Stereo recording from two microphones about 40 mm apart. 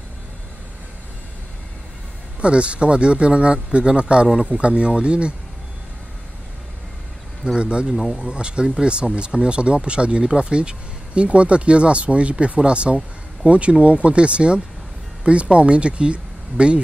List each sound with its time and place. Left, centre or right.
2.4 s speech: right
7.5 s speech: right
7.9 s speech: centre
8.2 s speech: right